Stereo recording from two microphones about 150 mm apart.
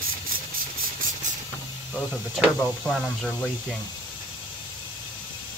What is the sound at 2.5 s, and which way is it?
Speech, 5° left (ahead or behind).